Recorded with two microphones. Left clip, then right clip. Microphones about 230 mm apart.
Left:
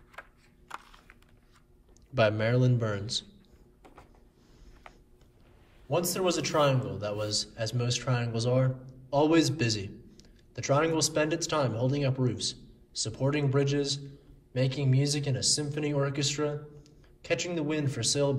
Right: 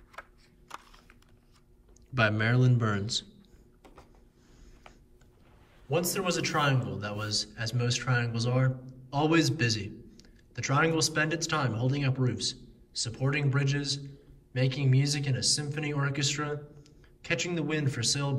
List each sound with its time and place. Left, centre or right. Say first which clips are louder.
0.1 s a sound: right 1 dB; centre
2.1 s a man's voice: left 1 dB; centre
5.9 s a man's voice: left 1 dB; centre